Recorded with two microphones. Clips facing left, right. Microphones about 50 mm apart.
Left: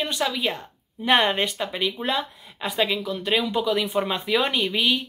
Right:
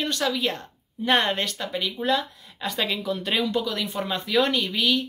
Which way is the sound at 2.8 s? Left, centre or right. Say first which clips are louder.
Left 2 dB; centre.